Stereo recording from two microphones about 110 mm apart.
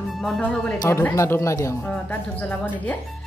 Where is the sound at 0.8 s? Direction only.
25° left (ahead or behind).